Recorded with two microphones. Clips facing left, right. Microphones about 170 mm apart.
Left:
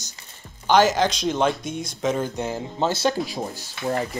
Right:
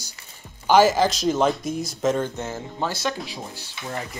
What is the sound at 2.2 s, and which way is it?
Speech, 15° left (ahead or behind).